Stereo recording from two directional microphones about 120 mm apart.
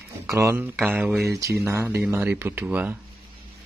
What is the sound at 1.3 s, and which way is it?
Speech, 25° right (ahead or behind).